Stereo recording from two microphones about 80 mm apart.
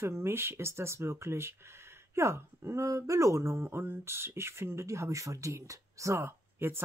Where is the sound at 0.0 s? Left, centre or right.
Right.